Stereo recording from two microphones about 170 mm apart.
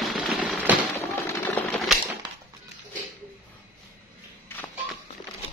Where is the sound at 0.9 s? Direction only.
15° left (ahead or behind).